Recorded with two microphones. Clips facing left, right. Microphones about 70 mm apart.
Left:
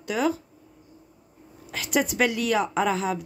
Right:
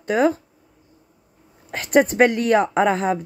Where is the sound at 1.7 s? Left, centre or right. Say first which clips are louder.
Right 8 dB; right.